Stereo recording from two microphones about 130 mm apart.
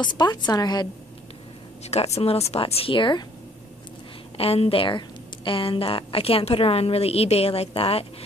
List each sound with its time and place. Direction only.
0.0 s a woman's voice: 35° left (ahead or behind)
1.9 s a woman's voice: 55° left (ahead or behind); by 3.3 s 35° left (ahead or behind)
4.4 s a woman's voice: 50° left (ahead or behind)